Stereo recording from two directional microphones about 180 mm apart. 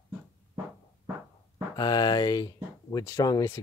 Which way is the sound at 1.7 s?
20° left (ahead or behind).